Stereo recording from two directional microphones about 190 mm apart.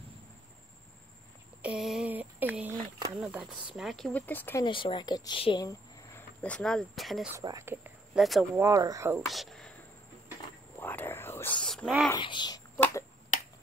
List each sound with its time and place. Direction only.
1.6 s a sound: 5° right (ahead or behind)
3.2 s speech: 5° right (ahead or behind); by 4.6 s 10° left (ahead or behind)
4.6 s a woman's voice: 25° left (ahead or behind)
6.4 s speech: 5° left (ahead or behind)
7.3 s speech: 15° right (ahead or behind); by 8.5 s centre (ahead or behind)
8.5 s speech: 15° right (ahead or behind)
9.3 s speech: centre (ahead or behind)
10.8 s whispering: 10° left (ahead or behind)
12.2 s a child's voice: 25° left (ahead or behind)